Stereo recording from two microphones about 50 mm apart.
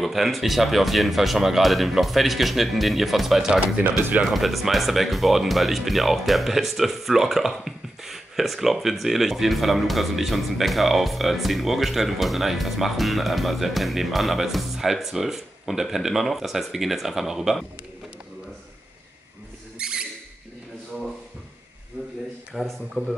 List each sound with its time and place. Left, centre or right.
0.0 s speech: centre
3.6 s speech: right
4.3 s speech: centre
19.8 s rodents: centre
22.5 s speech: centre